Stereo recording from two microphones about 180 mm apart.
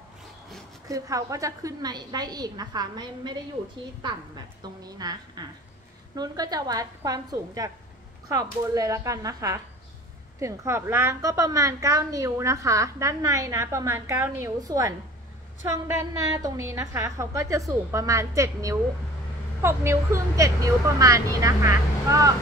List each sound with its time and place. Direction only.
0.8 s a woman's voice: 20° right (ahead or behind)
4.8 s a woman's voice: 20° right (ahead or behind)